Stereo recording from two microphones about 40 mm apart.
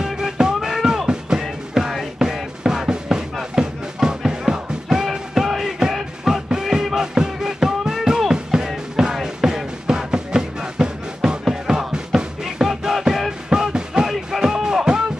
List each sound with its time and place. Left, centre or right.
0.0 s music: centre
13.5 s music: centre